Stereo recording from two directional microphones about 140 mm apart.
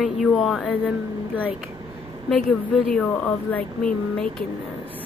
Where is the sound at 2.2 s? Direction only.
5° left (ahead or behind).